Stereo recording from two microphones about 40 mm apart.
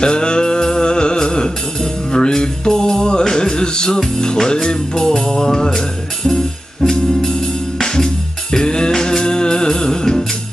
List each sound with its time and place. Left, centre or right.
0.0 s music: left